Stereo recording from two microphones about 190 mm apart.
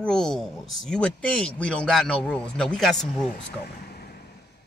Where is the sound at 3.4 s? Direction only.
55° left (ahead or behind).